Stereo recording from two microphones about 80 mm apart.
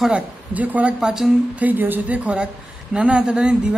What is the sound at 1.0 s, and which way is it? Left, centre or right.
Speech, centre.